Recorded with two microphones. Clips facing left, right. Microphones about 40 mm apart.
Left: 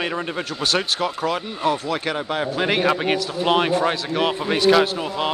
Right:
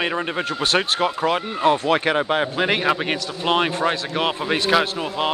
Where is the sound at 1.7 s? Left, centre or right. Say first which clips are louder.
Right 6 dB; right.